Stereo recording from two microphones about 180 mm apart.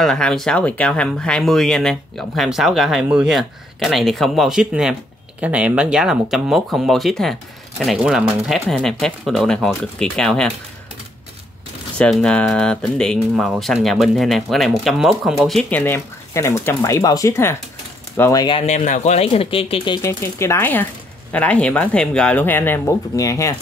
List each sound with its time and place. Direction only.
0.0 s speech: 5° left (ahead or behind)
12.0 s speech: 5° left (ahead or behind)
15.8 s speech: 15° left (ahead or behind)
20.0 s speech: 15° left (ahead or behind)